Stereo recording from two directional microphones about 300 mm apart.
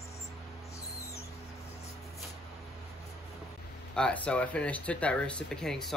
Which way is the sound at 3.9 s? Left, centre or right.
Centre.